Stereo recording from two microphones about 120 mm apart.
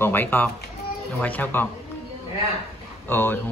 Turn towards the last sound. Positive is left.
turn(degrees=20)  # may be behind; listen again after turning